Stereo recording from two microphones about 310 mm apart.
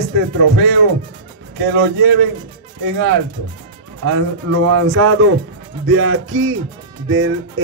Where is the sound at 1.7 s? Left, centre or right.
Right.